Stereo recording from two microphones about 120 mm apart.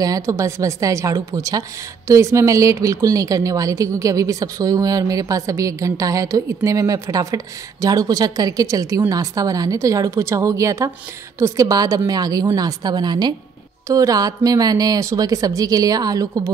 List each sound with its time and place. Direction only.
0.0 s a woman's voice: 25° right (ahead or behind)